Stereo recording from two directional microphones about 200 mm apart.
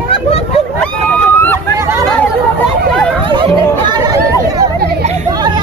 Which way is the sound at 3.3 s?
25° right (ahead or behind).